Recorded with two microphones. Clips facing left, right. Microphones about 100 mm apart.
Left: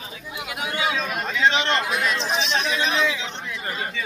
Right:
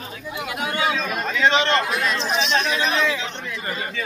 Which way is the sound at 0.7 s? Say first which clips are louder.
Right 1 dB; 10° left (ahead or behind).